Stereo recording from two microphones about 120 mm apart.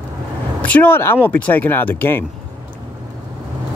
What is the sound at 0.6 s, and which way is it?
Speech, 15° left (ahead or behind).